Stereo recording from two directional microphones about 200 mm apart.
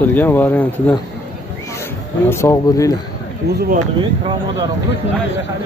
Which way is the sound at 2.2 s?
15° left (ahead or behind).